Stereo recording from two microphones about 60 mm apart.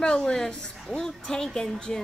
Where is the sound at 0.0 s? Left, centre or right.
Centre.